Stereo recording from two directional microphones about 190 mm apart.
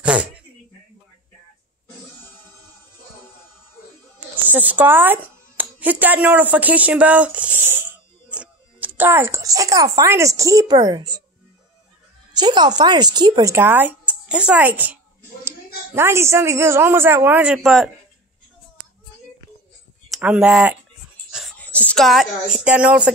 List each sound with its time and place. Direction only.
0.0 s sneeze: 5° right (ahead or behind)
4.5 s speech: 10° right (ahead or behind)
12.4 s a woman's voice: 20° right (ahead or behind); by 17.9 s 5° right (ahead or behind)
20.1 s a woman's voice: 5° right (ahead or behind)